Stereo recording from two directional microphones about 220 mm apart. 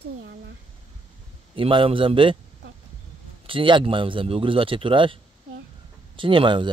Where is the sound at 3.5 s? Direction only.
25° right (ahead or behind).